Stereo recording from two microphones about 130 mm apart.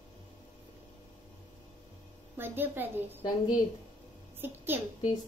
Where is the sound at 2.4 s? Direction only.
15° right (ahead or behind).